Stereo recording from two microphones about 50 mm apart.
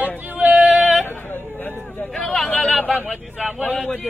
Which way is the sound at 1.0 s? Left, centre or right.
Left.